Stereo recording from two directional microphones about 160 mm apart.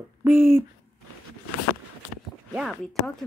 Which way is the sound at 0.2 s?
15° right (ahead or behind).